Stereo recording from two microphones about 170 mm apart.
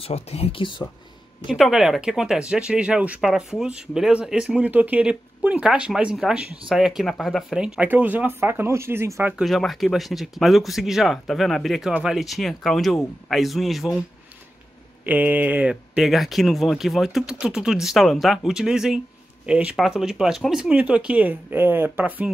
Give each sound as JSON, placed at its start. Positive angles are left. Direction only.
{"t": 0.0, "sound": "speech", "side_deg": 35}
{"t": 1.5, "sound": "speech", "side_deg": -5}
{"t": 9.4, "sound": "speech", "side_deg": 0}
{"t": 15.0, "sound": "speech", "side_deg": -10}